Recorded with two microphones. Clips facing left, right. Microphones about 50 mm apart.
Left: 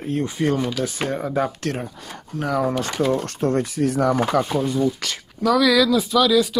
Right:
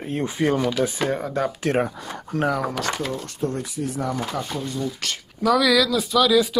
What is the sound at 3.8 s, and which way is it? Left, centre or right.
Speech, left.